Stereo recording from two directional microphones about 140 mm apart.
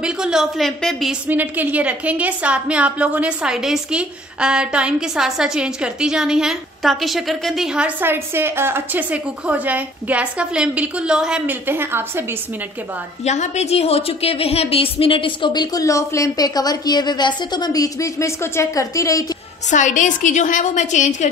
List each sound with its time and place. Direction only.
0.0 s speech: 5° right (ahead or behind)
1.2 s a woman's voice: 10° right (ahead or behind)
13.2 s a woman's voice: 55° left (ahead or behind); by 19.2 s 25° left (ahead or behind)
19.7 s a woman's voice: 60° left (ahead or behind)